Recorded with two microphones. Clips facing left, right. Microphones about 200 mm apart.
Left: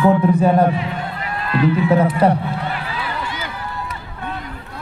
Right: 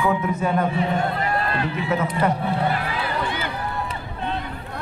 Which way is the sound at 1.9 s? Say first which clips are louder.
Left 4 dB; 35° left (ahead or behind).